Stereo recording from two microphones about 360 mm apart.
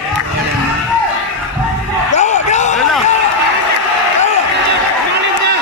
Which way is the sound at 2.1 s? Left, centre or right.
Centre.